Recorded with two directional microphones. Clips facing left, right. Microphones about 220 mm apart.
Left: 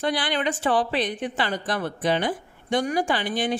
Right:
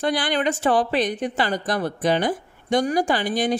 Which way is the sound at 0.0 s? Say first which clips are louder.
Right 3 dB; 45° right (ahead or behind).